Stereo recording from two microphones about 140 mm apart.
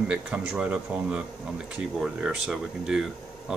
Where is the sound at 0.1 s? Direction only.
5° right (ahead or behind).